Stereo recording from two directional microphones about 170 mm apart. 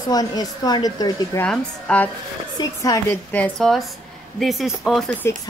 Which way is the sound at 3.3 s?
5° left (ahead or behind).